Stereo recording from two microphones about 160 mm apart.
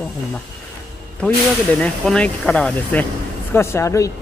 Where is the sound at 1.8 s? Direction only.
5° left (ahead or behind).